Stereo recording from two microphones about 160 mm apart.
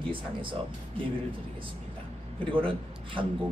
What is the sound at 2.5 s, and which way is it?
Speech, 30° right (ahead or behind).